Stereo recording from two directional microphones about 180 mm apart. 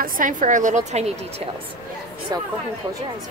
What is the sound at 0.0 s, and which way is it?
A woman's voice, 45° right (ahead or behind).